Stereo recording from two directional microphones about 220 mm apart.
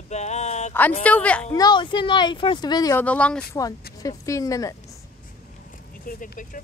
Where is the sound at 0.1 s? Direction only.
30° left (ahead or behind).